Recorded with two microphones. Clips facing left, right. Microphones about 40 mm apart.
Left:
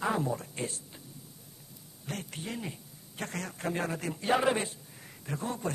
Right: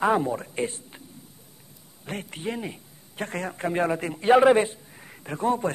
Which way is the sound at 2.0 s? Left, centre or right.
Right.